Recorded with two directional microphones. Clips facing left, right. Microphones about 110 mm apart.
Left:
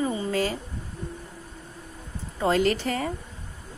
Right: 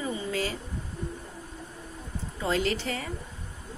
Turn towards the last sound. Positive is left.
turn(degrees=45)  # may be behind; listen again after turning